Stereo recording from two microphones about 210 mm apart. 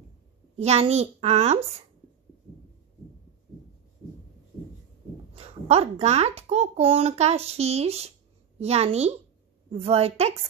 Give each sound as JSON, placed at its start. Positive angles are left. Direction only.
{"t": 0.6, "sound": "a child's voice", "side_deg": -30}
{"t": 5.3, "sound": "a child's voice", "side_deg": -30}